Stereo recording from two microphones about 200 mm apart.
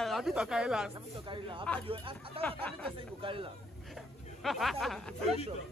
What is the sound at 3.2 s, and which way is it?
Speech, 25° right (ahead or behind).